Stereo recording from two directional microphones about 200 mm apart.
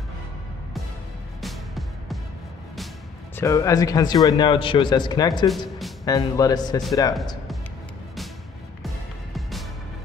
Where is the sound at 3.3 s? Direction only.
15° left (ahead or behind).